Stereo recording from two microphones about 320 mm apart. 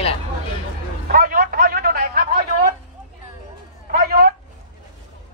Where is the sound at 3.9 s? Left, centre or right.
Right.